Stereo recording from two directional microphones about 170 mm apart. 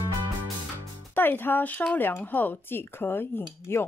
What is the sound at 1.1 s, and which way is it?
Speech, 10° left (ahead or behind).